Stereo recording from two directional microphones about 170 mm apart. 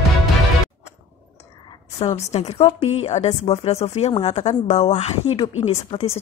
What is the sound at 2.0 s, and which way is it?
A woman's voice, 35° left (ahead or behind).